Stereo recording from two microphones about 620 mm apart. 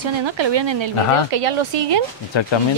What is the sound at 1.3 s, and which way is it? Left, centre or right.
Speech, right.